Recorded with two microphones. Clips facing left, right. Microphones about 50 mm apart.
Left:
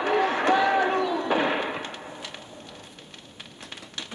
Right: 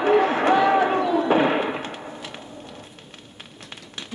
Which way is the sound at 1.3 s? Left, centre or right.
Centre.